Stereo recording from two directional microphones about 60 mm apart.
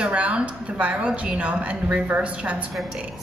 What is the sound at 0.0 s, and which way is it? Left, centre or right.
A woman's voice, right.